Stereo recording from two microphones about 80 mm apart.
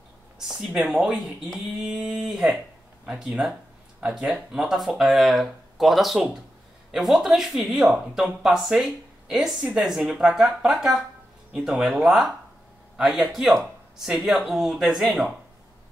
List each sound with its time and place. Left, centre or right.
0.4 s speech: centre